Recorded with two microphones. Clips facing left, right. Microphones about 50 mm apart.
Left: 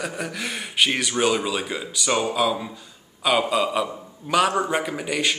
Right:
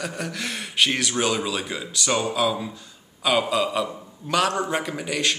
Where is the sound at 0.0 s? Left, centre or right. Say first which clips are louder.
Left 1 dB; centre.